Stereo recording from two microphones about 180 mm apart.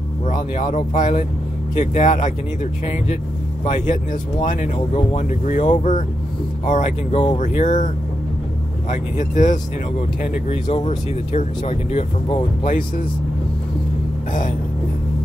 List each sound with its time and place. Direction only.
0.7 s speech: 40° left (ahead or behind)
8.9 s speech: 45° left (ahead or behind)